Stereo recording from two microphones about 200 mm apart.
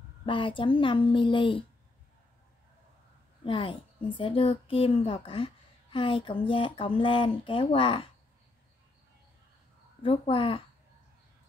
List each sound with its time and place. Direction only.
0.2 s a woman's voice: 25° left (ahead or behind)
3.4 s a woman's voice: 25° left (ahead or behind)
10.0 s a woman's voice: 25° left (ahead or behind)